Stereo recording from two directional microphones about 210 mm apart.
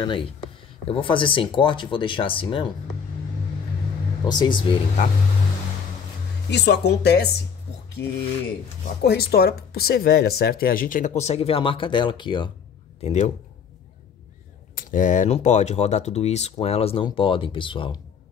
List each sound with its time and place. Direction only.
0.0 s speech: 25° left (ahead or behind)
4.2 s speech: 20° left (ahead or behind)
6.5 s speech: 55° left (ahead or behind)
8.0 s speech: 10° left (ahead or behind)
8.8 s speech: 50° left (ahead or behind); by 12.4 s 20° left (ahead or behind)
13.0 s speech: 35° left (ahead or behind)
14.8 s speech: 40° left (ahead or behind); by 17.9 s 25° left (ahead or behind)